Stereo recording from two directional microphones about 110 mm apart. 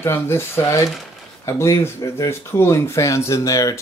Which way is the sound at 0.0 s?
25° left (ahead or behind).